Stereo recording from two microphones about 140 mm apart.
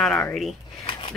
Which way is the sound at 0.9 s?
35° left (ahead or behind).